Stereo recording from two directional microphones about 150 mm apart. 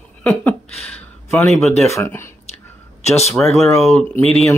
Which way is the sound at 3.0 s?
45° left (ahead or behind).